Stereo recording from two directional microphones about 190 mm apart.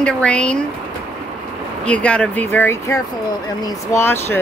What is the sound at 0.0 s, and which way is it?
Speech, 5° left (ahead or behind).